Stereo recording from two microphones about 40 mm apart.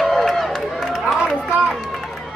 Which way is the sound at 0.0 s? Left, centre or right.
Centre.